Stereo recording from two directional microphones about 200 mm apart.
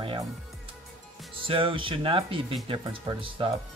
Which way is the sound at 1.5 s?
25° right (ahead or behind).